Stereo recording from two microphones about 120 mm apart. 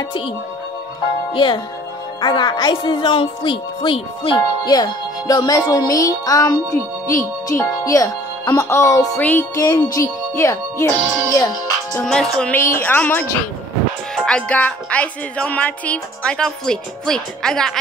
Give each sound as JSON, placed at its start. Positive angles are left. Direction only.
{"t": 1.3, "sound": "speech", "side_deg": 40}
{"t": 9.1, "sound": "music", "side_deg": 15}
{"t": 9.6, "sound": "speech", "side_deg": 25}
{"t": 12.1, "sound": "speech", "side_deg": 5}
{"t": 12.5, "sound": "music", "side_deg": 20}